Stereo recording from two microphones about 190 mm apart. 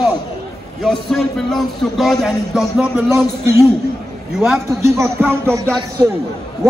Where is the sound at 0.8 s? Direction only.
Centre (ahead or behind).